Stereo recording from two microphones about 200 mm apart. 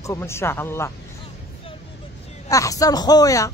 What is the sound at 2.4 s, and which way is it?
Speech, 15° left (ahead or behind).